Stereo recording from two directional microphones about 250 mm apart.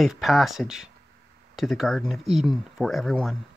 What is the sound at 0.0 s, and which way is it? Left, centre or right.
Speech, centre.